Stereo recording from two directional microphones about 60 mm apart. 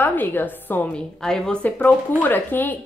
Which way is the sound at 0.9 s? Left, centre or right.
Centre.